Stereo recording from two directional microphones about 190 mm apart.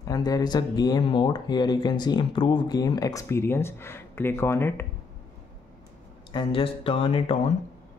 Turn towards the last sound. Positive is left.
turn(degrees=30)  # may be behind; listen again after turning